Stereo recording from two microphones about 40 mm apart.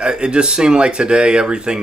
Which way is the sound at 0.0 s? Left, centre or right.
Right.